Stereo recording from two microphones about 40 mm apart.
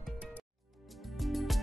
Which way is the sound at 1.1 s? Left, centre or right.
Centre.